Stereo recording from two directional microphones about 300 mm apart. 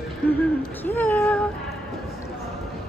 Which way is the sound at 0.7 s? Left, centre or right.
Centre.